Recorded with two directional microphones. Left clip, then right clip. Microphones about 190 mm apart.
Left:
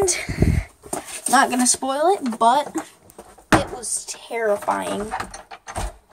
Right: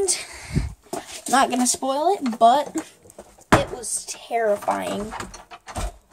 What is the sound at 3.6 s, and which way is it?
Speech, centre (ahead or behind).